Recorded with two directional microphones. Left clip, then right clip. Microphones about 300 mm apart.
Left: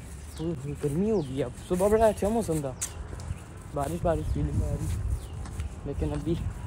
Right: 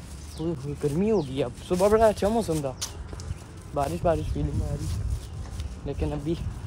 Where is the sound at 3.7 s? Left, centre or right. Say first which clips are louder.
Right 3 dB; centre.